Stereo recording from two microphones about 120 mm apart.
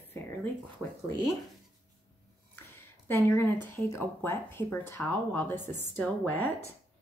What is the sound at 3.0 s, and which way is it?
Speech, 20° left (ahead or behind).